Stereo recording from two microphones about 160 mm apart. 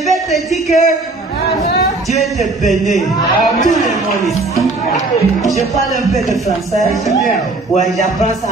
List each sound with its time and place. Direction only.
0.5 s a woman's voice: 45° left (ahead or behind)
2.6 s speech: centre (ahead or behind)